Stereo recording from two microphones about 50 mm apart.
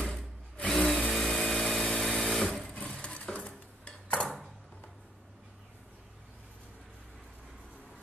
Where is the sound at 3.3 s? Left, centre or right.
Left.